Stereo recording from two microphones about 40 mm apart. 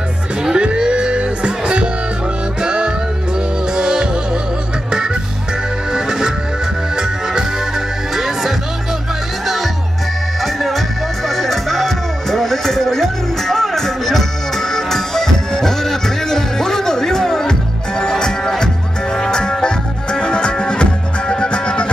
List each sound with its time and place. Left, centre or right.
0.4 s music: centre
5.9 s music: centre
10.4 s music: centre; by 21.8 s left